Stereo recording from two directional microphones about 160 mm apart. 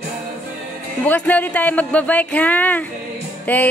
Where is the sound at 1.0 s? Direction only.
10° left (ahead or behind).